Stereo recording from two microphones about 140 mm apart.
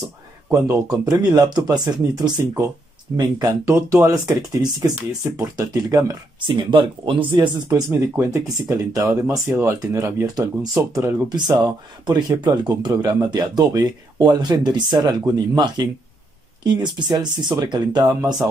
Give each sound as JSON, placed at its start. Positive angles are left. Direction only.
{"t": 0.5, "sound": "speech", "side_deg": -25}
{"t": 7.3, "sound": "speech", "side_deg": -25}